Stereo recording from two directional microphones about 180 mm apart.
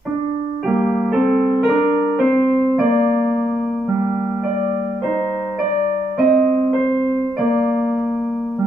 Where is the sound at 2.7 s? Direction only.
5° right (ahead or behind).